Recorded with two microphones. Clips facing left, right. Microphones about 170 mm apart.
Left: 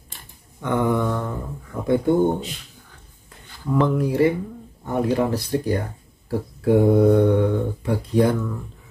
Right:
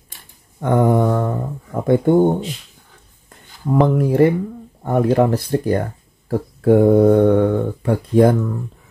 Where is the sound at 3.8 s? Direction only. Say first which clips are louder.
Right 4 dB; 50° right (ahead or behind).